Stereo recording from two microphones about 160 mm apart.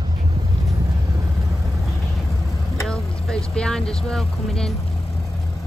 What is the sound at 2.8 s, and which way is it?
Vehicle, 5° left (ahead or behind).